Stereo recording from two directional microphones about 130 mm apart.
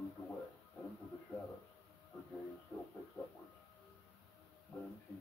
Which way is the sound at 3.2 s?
15° left (ahead or behind).